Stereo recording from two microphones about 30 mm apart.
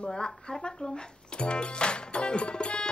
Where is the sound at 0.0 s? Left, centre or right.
Left.